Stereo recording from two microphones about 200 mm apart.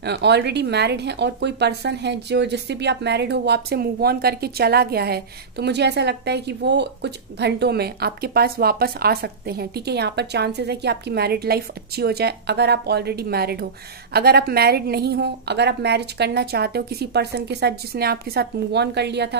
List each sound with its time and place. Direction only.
0.0 s speech: 55° right (ahead or behind)